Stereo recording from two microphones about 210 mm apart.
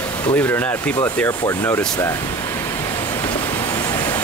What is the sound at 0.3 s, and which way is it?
Speech, 10° left (ahead or behind).